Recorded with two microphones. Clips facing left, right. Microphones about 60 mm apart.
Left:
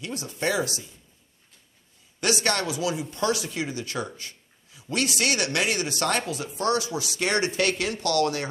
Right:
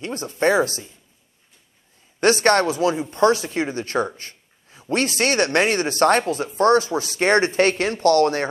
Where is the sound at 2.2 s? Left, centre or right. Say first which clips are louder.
Right 9 dB; right.